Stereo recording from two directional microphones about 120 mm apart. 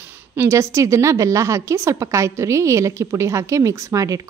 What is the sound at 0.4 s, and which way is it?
A woman's voice, 25° right (ahead or behind).